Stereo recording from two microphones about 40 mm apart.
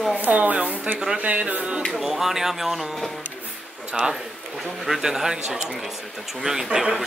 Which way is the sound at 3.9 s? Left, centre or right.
Centre.